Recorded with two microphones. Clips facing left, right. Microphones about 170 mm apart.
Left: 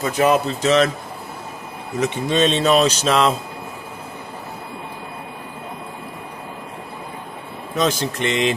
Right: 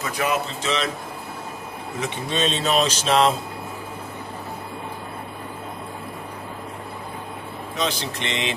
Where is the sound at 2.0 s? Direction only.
45° left (ahead or behind).